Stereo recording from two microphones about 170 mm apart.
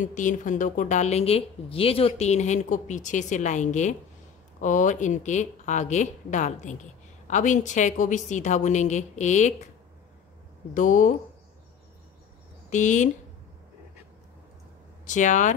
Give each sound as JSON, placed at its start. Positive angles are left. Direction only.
{"t": 0.0, "sound": "speech", "side_deg": 50}
{"t": 10.7, "sound": "speech", "side_deg": 50}
{"t": 12.6, "sound": "speech", "side_deg": 45}
{"t": 15.0, "sound": "speech", "side_deg": 45}